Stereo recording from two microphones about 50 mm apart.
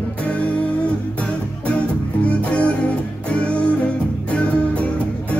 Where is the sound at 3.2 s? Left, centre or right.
Left.